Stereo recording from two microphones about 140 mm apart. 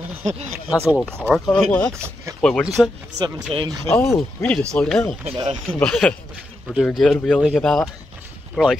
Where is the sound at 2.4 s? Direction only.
5° left (ahead or behind).